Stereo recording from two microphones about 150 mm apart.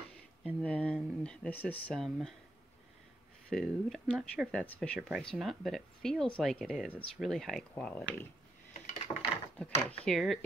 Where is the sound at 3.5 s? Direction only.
Centre (ahead or behind).